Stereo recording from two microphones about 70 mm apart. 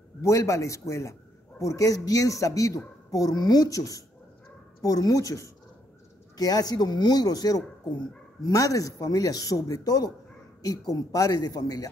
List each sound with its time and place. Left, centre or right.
0.2 s speech: left
6.3 s speech: left